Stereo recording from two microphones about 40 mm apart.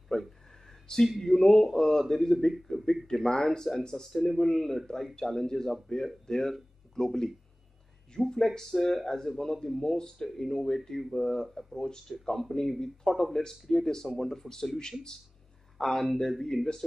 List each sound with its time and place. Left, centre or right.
0.1 s a sound: centre
1.0 s speech: centre
3.1 s speech: centre
5.9 s speech: left